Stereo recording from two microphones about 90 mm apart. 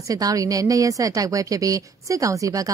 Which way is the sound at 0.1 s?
40° right (ahead or behind).